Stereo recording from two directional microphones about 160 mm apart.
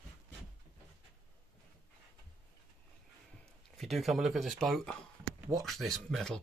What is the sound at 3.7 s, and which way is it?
Speech, centre (ahead or behind).